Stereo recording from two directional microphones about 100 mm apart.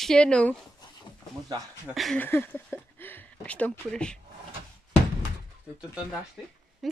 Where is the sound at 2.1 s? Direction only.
20° left (ahead or behind).